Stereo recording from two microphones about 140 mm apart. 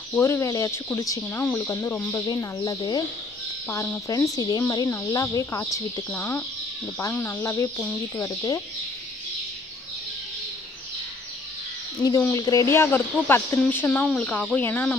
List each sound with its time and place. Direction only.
0.1 s speech: 20° left (ahead or behind)
2.2 s speech: 25° left (ahead or behind)
3.6 s speech: 15° left (ahead or behind)
4.1 s speech: 25° left (ahead or behind)
12.2 s speech: 20° left (ahead or behind)